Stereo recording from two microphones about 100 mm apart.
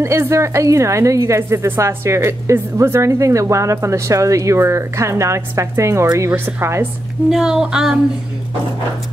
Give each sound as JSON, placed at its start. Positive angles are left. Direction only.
{"t": 0.0, "sound": "a woman's voice", "side_deg": -30}
{"t": 7.2, "sound": "speech", "side_deg": -5}